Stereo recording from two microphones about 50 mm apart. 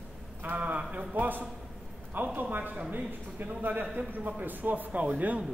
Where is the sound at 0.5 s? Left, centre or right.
Right.